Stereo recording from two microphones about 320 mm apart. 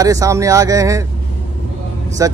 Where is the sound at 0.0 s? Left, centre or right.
Centre.